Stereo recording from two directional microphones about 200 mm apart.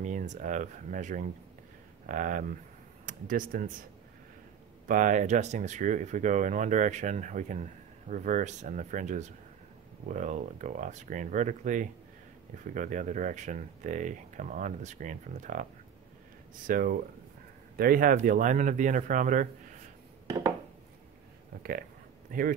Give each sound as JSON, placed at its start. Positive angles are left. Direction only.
{"t": 0.0, "sound": "speech", "side_deg": -40}
{"t": 4.8, "sound": "speech", "side_deg": -40}
{"t": 16.6, "sound": "speech", "side_deg": -45}
{"t": 22.3, "sound": "speech", "side_deg": -45}